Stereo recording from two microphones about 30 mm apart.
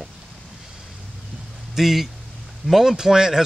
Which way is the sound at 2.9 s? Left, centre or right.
Centre.